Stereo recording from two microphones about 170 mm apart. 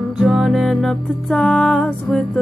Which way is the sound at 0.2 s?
5° right (ahead or behind).